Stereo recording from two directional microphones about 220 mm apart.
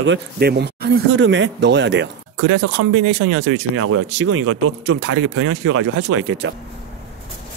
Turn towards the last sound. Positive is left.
turn(degrees=-60)  # may be behind; listen again after turning